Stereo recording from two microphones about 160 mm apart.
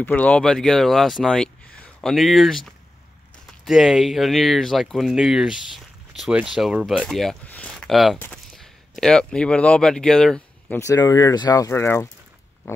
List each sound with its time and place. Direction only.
0.0 s speech: 10° left (ahead or behind)
10.8 s speech: 20° left (ahead or behind)
12.6 s pig: 15° left (ahead or behind)